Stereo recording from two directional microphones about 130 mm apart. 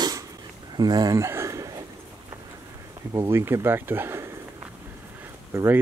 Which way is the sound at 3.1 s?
20° right (ahead or behind).